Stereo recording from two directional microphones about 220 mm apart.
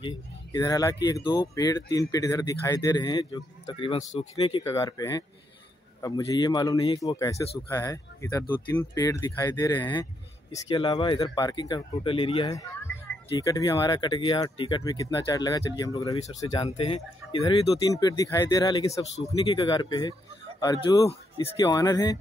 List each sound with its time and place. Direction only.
0.0 s speech: 15° left (ahead or behind)
16.2 s speech: 30° left (ahead or behind)